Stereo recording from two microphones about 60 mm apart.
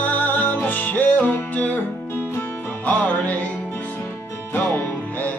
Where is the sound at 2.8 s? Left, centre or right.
Left.